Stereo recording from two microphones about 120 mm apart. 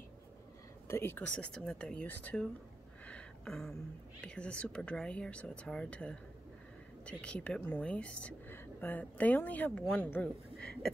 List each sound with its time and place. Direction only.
0.8 s speech: 20° left (ahead or behind)
1.2 s speech: 10° left (ahead or behind)
3.1 s a sound: 5° left (ahead or behind)
4.2 s speech: 10° left (ahead or behind)
9.7 s speech: centre (ahead or behind)